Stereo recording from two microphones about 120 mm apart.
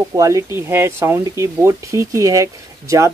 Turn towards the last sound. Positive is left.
turn(degrees=-25)  # may be behind; listen again after turning